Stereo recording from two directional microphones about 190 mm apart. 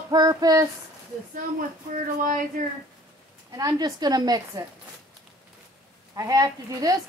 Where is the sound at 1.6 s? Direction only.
45° right (ahead or behind).